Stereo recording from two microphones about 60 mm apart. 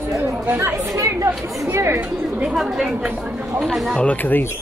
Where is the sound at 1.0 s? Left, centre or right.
Right.